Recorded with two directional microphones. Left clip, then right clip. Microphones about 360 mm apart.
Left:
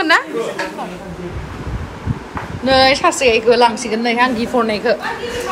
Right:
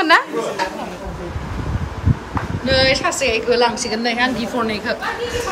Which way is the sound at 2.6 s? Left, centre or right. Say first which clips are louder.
Left 4 dB; centre.